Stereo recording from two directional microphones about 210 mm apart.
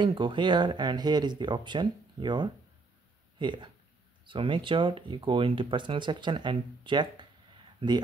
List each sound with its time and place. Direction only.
0.0 s speech: 25° right (ahead or behind)